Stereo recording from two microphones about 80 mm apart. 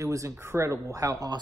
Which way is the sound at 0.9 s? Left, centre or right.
Right.